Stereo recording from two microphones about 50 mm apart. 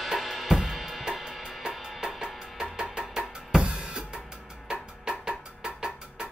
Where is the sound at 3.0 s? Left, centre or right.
Centre.